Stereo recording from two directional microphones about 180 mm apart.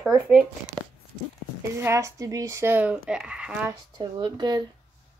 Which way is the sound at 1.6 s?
15° right (ahead or behind).